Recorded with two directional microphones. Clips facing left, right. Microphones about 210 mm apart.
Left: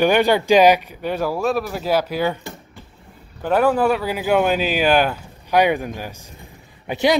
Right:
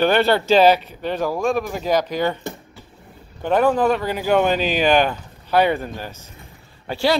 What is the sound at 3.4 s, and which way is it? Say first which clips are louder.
Speech: even; 5° left (ahead or behind).